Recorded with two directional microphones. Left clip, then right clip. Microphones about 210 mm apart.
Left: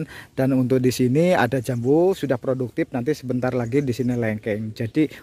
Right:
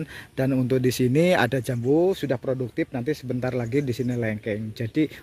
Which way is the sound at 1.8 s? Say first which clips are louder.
Left 3 dB; 25° left (ahead or behind).